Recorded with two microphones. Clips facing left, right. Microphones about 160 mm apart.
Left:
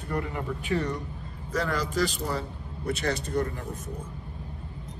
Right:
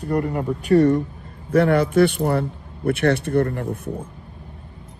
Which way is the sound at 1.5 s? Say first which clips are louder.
Right 12 dB; 60° right (ahead or behind).